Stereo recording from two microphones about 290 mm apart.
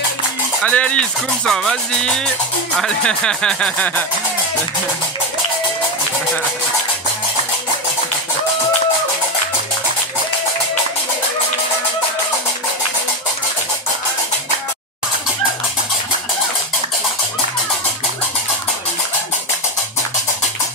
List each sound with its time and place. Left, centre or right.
0.7 s speech: centre